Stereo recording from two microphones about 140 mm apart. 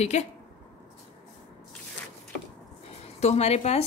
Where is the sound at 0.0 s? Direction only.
55° left (ahead or behind).